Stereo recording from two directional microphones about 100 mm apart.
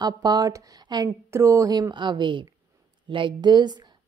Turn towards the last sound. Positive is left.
turn(degrees=-50)  # may be behind; listen again after turning